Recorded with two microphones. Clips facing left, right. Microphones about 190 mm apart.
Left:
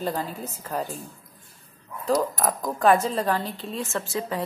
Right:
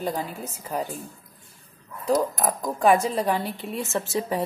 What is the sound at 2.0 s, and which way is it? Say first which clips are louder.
A woman's voice: right 1 dB; 15° right (ahead or behind).